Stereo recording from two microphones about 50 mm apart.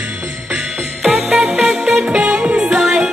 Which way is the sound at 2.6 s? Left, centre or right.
Centre.